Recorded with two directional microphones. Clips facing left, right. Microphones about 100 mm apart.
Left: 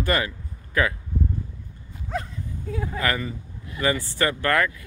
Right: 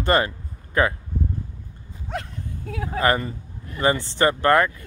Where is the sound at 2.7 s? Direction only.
75° right (ahead or behind).